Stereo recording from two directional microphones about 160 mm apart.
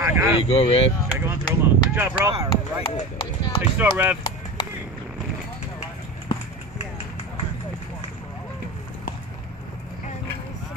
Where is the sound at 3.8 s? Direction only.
10° right (ahead or behind).